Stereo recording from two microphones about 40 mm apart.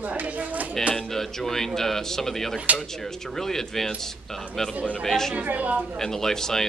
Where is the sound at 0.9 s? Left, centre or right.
Centre.